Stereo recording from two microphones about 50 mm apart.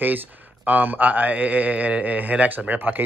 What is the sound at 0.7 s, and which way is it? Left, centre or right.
Speech, right.